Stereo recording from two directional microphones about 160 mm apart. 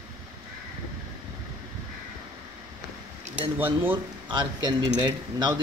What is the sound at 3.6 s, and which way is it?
Speech, 10° right (ahead or behind).